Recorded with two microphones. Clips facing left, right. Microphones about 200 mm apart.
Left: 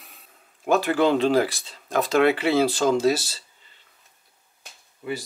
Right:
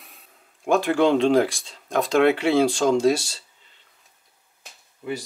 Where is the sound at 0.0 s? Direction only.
Centre (ahead or behind).